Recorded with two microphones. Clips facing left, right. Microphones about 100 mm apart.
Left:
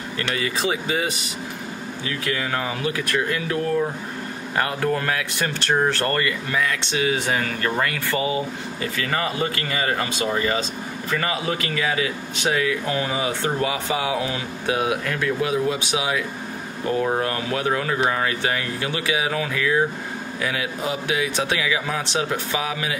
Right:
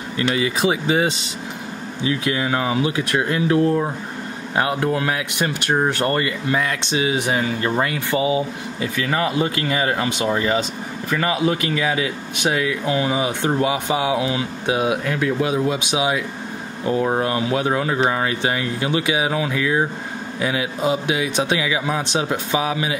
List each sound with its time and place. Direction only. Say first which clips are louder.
0.3 s speech: right 4 dB; 20° right (ahead or behind)